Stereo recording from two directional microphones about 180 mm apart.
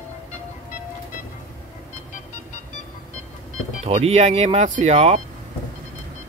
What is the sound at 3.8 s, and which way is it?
Speech, 35° right (ahead or behind).